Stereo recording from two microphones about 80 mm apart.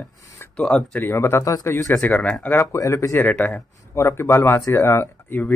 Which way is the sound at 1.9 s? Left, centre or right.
Centre.